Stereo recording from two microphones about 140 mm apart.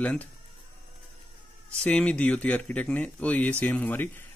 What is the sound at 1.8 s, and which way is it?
Speech, 5° left (ahead or behind).